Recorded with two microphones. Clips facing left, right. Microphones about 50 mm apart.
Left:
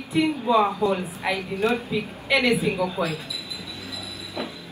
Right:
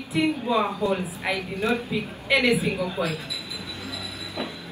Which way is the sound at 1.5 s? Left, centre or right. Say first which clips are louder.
Left 2 dB; left.